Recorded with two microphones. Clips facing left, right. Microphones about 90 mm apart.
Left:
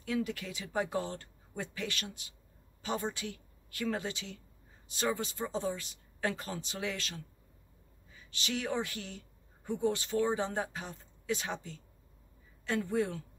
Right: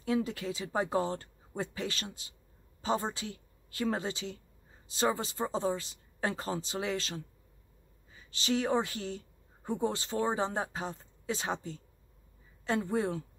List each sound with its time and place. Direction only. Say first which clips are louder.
0.0 s speech: right 3 dB; 30° right (ahead or behind)